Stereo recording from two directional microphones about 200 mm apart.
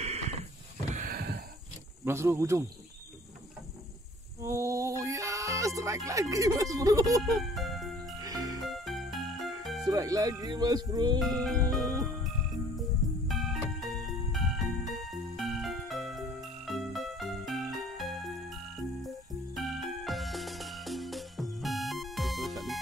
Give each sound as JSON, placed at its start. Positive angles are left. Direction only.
{"t": 0.0, "sound": "a sound", "side_deg": -35}
{"t": 0.9, "sound": "a sound", "side_deg": -45}
{"t": 2.0, "sound": "speech", "side_deg": -10}
{"t": 4.4, "sound": "music", "side_deg": -15}
{"t": 6.3, "sound": "speech", "side_deg": -15}
{"t": 7.2, "sound": "music", "side_deg": 0}
{"t": 8.2, "sound": "music", "side_deg": -20}
{"t": 8.6, "sound": "music", "side_deg": 0}
{"t": 9.8, "sound": "speech", "side_deg": -20}
{"t": 11.1, "sound": "music", "side_deg": 0}
{"t": 13.3, "sound": "music", "side_deg": 0}